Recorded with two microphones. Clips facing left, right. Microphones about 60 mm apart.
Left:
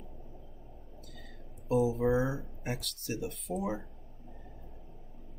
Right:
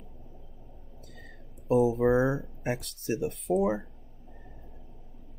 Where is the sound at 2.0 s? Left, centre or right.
Right.